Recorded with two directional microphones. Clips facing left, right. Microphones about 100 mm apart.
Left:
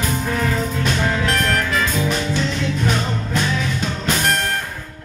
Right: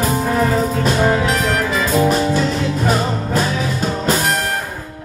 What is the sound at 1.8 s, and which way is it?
Music, 40° right (ahead or behind).